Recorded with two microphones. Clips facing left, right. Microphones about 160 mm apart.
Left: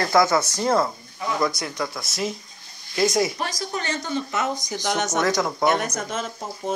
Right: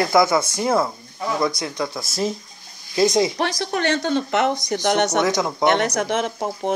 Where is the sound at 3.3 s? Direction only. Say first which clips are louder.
Right 5 dB; 75° right (ahead or behind).